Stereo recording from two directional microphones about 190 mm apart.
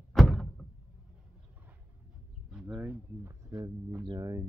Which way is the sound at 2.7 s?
10° right (ahead or behind).